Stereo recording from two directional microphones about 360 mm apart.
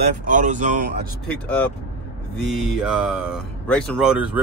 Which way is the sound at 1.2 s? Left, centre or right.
Centre.